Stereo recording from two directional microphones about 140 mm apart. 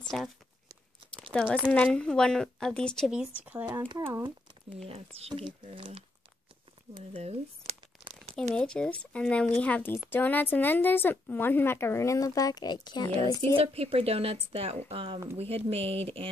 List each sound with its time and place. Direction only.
0.1 s speech: centre (ahead or behind)
1.3 s speech: 5° left (ahead or behind)
3.1 s speech: 10° right (ahead or behind)
4.8 s speech: 45° right (ahead or behind)
7.0 s a sound: 45° right (ahead or behind)
8.5 s a woman's voice: 5° left (ahead or behind); by 13.4 s 30° left (ahead or behind)
13.6 s speech: 45° right (ahead or behind)